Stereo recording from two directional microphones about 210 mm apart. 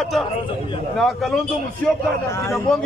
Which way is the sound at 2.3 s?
15° left (ahead or behind).